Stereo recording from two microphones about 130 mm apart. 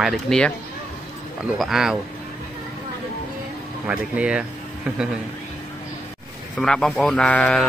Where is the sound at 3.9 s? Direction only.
10° right (ahead or behind).